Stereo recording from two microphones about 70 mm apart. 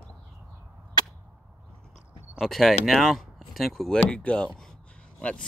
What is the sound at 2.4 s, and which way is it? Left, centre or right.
Speech, centre.